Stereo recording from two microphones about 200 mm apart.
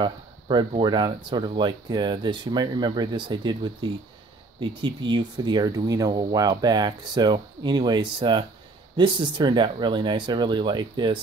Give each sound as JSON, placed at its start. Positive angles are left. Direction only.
{"t": 0.0, "sound": "speech", "side_deg": -20}